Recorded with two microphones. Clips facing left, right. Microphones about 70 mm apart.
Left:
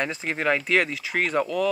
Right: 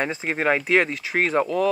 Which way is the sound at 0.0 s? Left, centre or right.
Centre.